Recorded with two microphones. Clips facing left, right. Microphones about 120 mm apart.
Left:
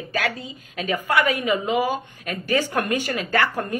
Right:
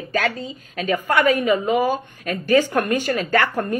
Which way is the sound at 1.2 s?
45° right (ahead or behind).